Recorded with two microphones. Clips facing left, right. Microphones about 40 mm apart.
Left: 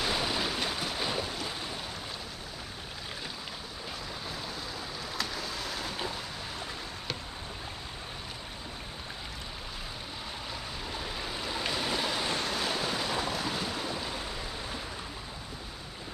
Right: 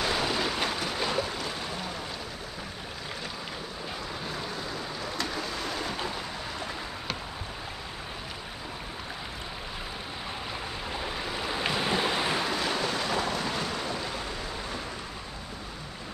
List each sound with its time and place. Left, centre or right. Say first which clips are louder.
0.0 s waves: right 3 dB; centre
0.7 s a sound: right 3 dB; centre
4.3 s boat: right 4 dB; centre
10.9 s waves: right 3 dB; right
12.5 s waves: right 3 dB; centre